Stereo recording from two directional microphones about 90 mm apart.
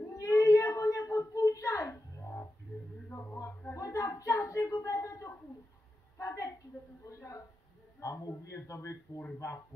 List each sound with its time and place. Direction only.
0.0 s child singing: 40° left (ahead or behind)
3.1 s a sound: 35° left (ahead or behind)
8.0 s a man's voice: 35° left (ahead or behind)